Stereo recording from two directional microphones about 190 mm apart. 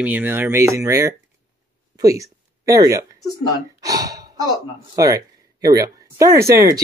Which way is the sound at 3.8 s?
20° right (ahead or behind).